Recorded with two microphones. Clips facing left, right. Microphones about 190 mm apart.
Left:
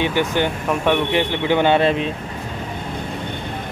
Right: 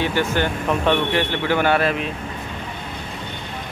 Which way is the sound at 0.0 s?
15° left (ahead or behind).